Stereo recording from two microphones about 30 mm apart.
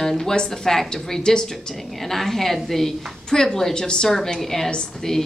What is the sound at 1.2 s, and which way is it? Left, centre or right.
Speech, left.